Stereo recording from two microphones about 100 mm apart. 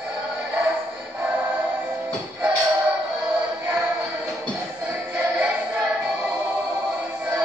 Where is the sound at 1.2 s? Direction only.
15° right (ahead or behind).